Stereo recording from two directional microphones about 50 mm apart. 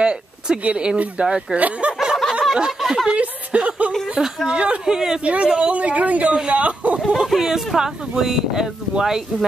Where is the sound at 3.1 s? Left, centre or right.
Right.